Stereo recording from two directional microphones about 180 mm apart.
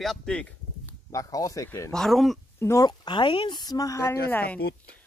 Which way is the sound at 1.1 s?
20° left (ahead or behind).